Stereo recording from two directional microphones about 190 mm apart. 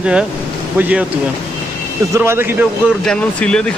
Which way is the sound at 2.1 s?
15° right (ahead or behind).